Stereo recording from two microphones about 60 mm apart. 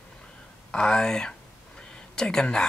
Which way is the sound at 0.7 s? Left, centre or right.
Centre.